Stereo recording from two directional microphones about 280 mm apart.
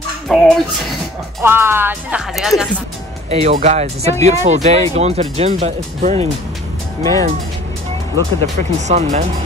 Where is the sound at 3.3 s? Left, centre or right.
Right.